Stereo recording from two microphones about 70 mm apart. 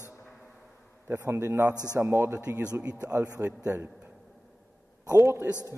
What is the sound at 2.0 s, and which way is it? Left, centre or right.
Speech, right.